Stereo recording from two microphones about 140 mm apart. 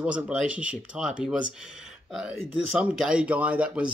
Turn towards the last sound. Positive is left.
turn(degrees=-10)  # may be behind; listen again after turning